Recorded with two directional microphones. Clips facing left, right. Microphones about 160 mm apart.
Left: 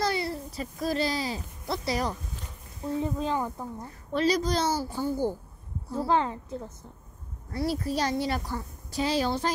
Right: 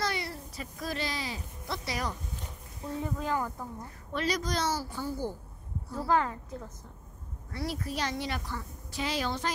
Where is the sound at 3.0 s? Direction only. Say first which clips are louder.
Left 3 dB; 20° left (ahead or behind).